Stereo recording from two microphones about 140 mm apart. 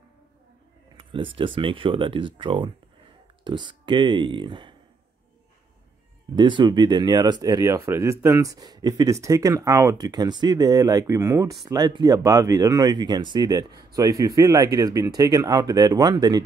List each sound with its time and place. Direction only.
0.9 s speech: 40° right (ahead or behind)
6.3 s speech: 35° right (ahead or behind)